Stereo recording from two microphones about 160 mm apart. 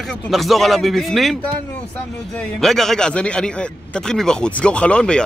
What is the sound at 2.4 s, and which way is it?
A man's voice, centre (ahead or behind).